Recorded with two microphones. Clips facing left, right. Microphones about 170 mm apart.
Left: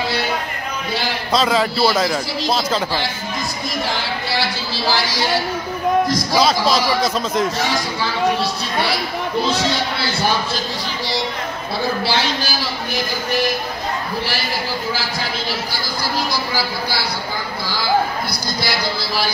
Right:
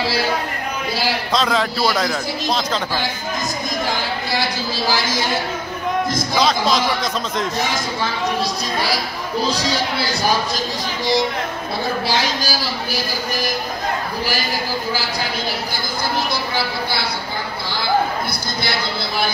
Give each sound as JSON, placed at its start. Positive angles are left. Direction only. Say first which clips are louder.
{"t": 1.3, "sound": "a man's voice", "louder": "left 4 dB", "side_deg": 5}
{"t": 6.3, "sound": "a man's voice", "louder": "left 1 dB", "side_deg": 5}
{"t": 9.4, "sound": "speech", "louder": "left 1 dB", "side_deg": -40}